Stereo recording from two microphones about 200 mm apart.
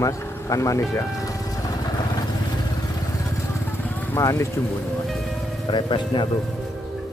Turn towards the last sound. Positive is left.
turn(degrees=20)  # may be behind; listen again after turning